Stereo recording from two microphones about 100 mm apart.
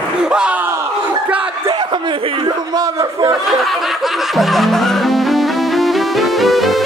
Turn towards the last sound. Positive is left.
turn(degrees=0)  # may be behind; listen again after turning